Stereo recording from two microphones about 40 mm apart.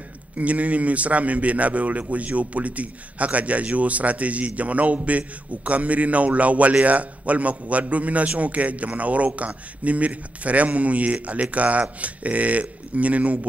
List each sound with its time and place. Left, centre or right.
0.4 s a man's voice: right